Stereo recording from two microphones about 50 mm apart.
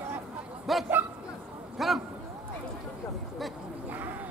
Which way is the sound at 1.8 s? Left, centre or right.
Centre.